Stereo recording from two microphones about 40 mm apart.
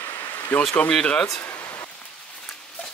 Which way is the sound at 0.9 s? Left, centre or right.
Left.